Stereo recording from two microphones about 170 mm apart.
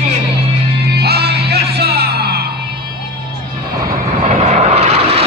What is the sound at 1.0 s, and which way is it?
Music, 75° right (ahead or behind).